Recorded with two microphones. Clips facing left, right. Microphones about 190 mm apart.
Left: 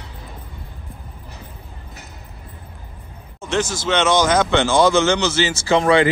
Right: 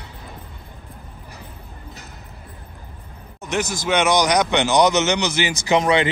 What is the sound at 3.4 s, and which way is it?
Speech, 15° right (ahead or behind).